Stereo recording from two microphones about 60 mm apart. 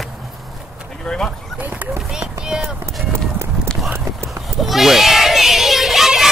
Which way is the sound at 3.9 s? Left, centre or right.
Right.